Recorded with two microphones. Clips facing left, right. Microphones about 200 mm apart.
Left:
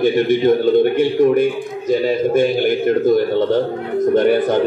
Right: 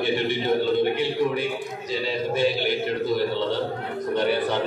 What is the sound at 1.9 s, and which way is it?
A man's voice, 50° left (ahead or behind).